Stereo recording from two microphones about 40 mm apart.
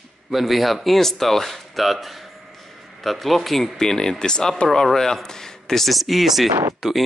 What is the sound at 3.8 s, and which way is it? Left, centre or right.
Speech, centre.